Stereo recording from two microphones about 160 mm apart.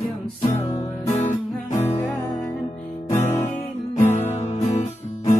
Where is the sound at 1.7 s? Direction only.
15° left (ahead or behind).